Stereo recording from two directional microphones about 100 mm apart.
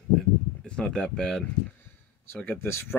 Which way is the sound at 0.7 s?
10° left (ahead or behind).